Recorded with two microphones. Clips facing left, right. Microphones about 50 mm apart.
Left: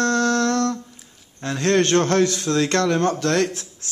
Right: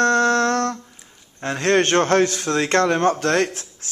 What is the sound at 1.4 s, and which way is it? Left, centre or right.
Speech, right.